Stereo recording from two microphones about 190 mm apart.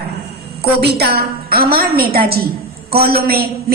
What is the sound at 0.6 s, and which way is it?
A woman's voice, 60° right (ahead or behind).